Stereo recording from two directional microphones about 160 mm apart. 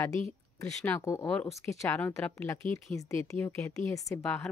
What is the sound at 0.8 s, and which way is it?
A woman's voice, 15° left (ahead or behind).